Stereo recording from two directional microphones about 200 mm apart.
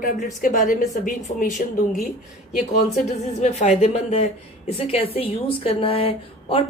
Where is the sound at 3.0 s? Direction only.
35° left (ahead or behind).